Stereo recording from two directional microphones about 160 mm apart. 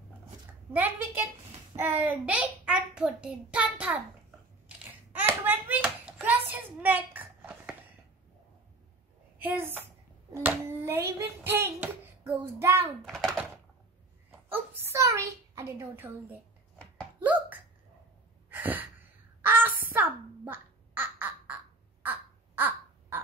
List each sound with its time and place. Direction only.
0.7 s a child's voice: 10° right (ahead or behind)
4.6 s a sound: 10° right (ahead or behind)
9.4 s a child's voice: 10° right (ahead or behind)
13.0 s a child's voice: centre (ahead or behind)
14.5 s a child's voice: 15° right (ahead or behind)
17.2 s hiccup: 10° right (ahead or behind)
18.5 s gasp: 10° right (ahead or behind)
19.4 s a sound: 15° right (ahead or behind)
22.0 s crow: 10° right (ahead or behind)